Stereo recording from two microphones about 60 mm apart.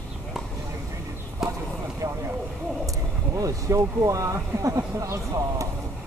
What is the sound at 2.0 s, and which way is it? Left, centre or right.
Vehicle, right.